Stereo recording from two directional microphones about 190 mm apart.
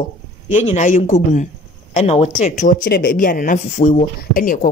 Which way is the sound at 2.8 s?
55° left (ahead or behind).